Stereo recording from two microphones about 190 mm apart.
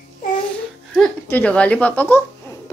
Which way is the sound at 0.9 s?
5° left (ahead or behind).